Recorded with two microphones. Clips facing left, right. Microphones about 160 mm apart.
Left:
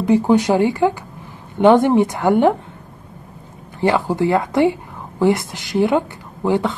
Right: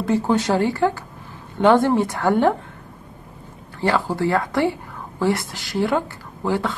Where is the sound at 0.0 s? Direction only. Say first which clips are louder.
Left 5 dB; 15° left (ahead or behind).